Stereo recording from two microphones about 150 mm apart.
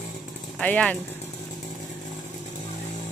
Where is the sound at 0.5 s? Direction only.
5° left (ahead or behind).